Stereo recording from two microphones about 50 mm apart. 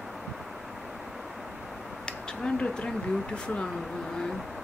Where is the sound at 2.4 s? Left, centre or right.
Centre.